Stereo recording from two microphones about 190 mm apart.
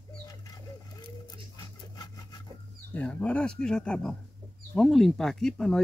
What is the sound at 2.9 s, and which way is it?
Speech, 5° left (ahead or behind).